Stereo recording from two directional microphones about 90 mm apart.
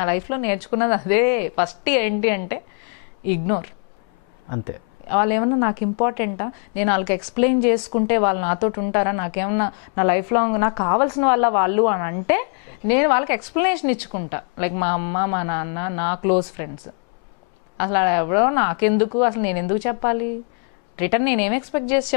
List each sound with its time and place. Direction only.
0.0 s a woman's voice: 15° left (ahead or behind)
5.1 s a woman's voice: 15° left (ahead or behind)
17.7 s a woman's voice: 15° left (ahead or behind)